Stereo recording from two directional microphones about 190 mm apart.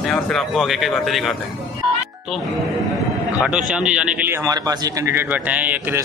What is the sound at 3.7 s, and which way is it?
Speech, 5° right (ahead or behind).